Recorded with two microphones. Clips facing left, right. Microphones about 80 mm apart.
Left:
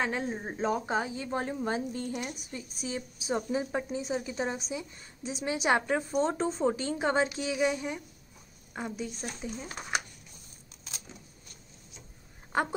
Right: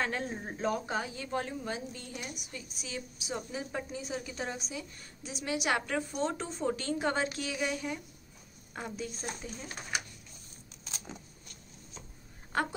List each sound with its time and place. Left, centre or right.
0.0 s a woman's voice: centre; by 6.7 s left
6.7 s a woman's voice: centre
8.7 s speech: centre